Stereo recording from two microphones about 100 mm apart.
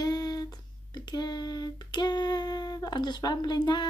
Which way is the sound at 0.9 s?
45° left (ahead or behind).